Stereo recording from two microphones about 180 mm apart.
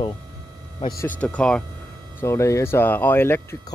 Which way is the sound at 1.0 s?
10° left (ahead or behind).